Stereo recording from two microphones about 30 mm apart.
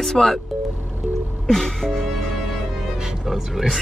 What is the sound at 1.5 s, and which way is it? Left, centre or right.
Music, centre.